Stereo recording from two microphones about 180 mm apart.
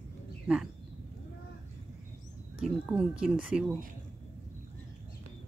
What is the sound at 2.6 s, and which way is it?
Speech, 5° right (ahead or behind).